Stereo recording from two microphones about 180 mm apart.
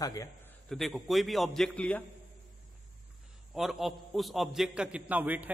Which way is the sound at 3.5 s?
Centre (ahead or behind).